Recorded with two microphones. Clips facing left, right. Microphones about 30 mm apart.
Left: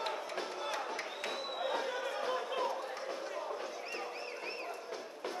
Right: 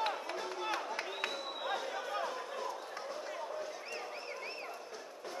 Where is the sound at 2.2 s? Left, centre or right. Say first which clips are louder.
Left 4 dB; left.